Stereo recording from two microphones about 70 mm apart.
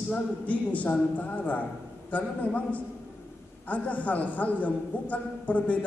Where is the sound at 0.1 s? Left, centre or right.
Left.